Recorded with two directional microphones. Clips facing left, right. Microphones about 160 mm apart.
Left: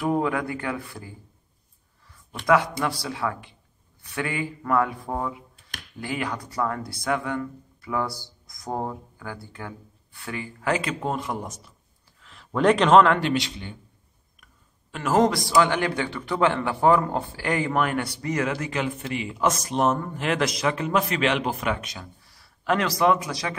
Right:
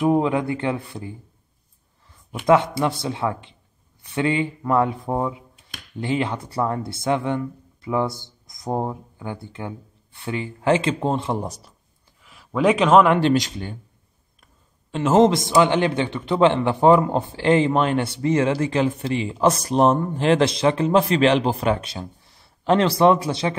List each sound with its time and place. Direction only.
0.0 s a man's voice: 20° right (ahead or behind)
2.4 s a man's voice: 25° right (ahead or behind)
12.2 s a sound: 10° right (ahead or behind)
13.2 s speech: 40° right (ahead or behind)
14.4 s a man's voice: 25° right (ahead or behind)